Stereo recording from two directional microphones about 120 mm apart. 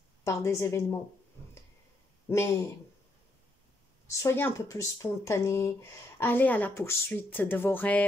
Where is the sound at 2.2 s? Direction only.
20° left (ahead or behind).